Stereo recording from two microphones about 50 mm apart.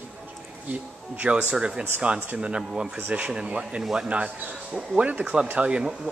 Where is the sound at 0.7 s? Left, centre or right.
Right.